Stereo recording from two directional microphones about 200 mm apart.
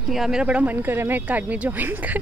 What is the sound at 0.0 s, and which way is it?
A woman's voice, centre (ahead or behind).